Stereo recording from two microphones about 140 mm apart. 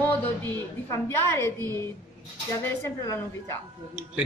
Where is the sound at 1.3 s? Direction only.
15° left (ahead or behind).